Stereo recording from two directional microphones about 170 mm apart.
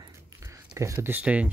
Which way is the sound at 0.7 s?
15° right (ahead or behind).